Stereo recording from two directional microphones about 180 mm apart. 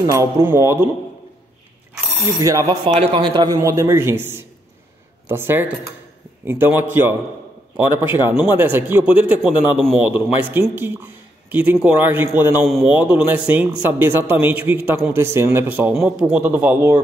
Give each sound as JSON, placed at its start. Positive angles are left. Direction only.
{"t": 0.0, "sound": "speech", "side_deg": -15}
{"t": 2.2, "sound": "speech", "side_deg": -20}